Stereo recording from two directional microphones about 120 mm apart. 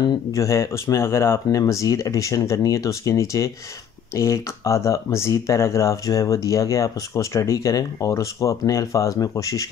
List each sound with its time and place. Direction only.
0.3 s speech: 25° left (ahead or behind)